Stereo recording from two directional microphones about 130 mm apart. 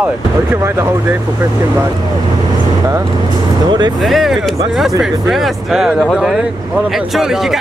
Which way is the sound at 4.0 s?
Centre (ahead or behind).